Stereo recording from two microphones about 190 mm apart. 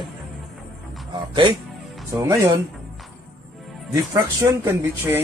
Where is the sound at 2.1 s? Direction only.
15° right (ahead or behind).